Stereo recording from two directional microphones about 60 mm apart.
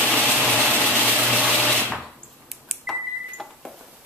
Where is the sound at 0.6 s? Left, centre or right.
Centre.